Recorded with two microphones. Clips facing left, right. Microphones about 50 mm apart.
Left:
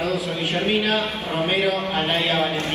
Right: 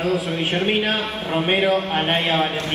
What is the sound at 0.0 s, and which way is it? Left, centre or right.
A man's voice, right.